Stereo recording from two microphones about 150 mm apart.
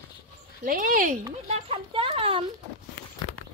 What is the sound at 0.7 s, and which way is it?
Speech, 65° right (ahead or behind).